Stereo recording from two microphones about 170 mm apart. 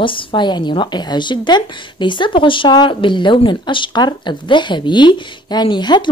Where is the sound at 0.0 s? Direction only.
30° left (ahead or behind).